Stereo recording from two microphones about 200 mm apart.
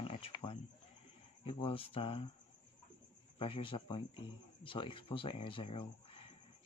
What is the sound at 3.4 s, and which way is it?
Speech, 25° left (ahead or behind).